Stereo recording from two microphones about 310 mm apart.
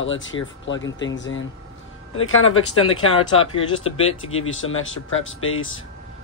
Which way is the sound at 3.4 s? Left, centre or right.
Centre.